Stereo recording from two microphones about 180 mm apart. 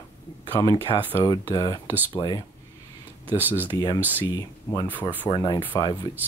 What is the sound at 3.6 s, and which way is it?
Speech, 20° left (ahead or behind).